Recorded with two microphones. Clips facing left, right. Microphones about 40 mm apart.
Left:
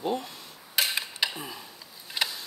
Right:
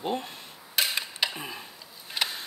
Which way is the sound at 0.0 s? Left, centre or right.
Right.